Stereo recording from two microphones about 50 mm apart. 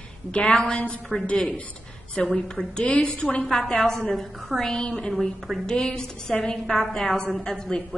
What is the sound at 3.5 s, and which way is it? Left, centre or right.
A woman's voice, centre.